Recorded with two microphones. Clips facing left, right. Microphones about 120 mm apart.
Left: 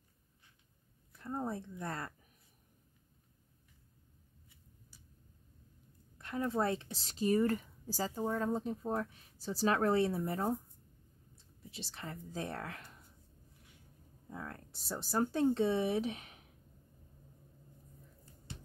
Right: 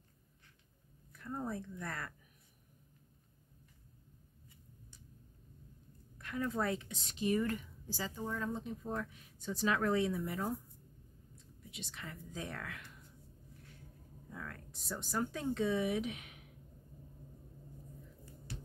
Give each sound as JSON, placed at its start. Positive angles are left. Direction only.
{"t": 1.1, "sound": "speech", "side_deg": 30}
{"t": 6.1, "sound": "speech", "side_deg": 30}
{"t": 14.3, "sound": "speech", "side_deg": 30}
{"t": 18.5, "sound": "music", "side_deg": 25}